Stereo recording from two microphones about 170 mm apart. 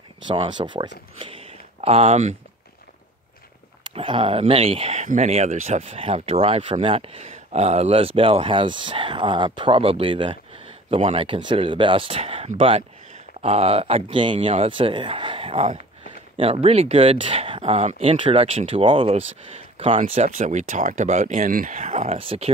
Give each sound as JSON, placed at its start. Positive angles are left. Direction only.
{"t": 0.3, "sound": "speech", "side_deg": -30}
{"t": 3.8, "sound": "speech", "side_deg": -30}
{"t": 20.0, "sound": "speech", "side_deg": -45}